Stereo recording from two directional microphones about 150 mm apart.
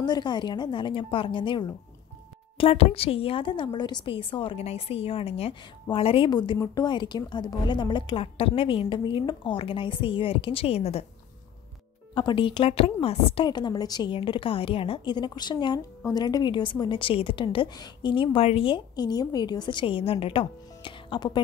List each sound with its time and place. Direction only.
0.0 s a woman's voice: 30° left (ahead or behind)
12.1 s a woman's voice: 30° left (ahead or behind)